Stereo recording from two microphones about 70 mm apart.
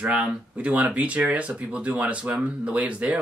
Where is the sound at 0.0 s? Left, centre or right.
Centre.